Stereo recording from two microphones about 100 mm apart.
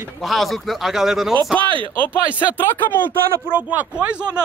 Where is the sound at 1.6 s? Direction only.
55° right (ahead or behind).